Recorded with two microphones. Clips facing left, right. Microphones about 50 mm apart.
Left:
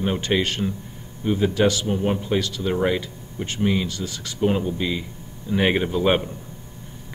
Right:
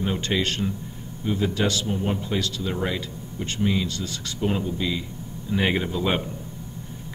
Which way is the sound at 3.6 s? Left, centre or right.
Left.